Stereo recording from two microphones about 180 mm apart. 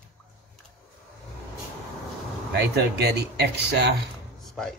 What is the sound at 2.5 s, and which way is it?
Speech, 65° right (ahead or behind).